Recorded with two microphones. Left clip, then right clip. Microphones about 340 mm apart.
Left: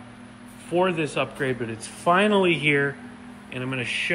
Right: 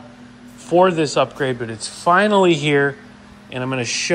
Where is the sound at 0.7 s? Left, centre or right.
Centre.